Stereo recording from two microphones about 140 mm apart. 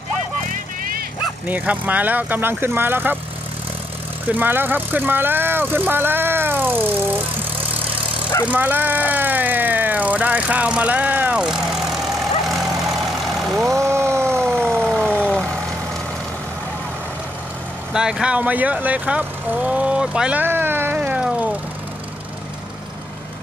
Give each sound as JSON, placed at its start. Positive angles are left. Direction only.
{"t": 1.5, "sound": "speech", "side_deg": -10}
{"t": 4.3, "sound": "speech", "side_deg": -15}
{"t": 8.5, "sound": "speech", "side_deg": -10}
{"t": 12.4, "sound": "vehicle", "side_deg": 0}
{"t": 13.7, "sound": "vehicle", "side_deg": -20}
{"t": 14.4, "sound": "siren", "side_deg": 5}
{"t": 14.9, "sound": "vehicle", "side_deg": 10}
{"t": 17.9, "sound": "speech", "side_deg": -5}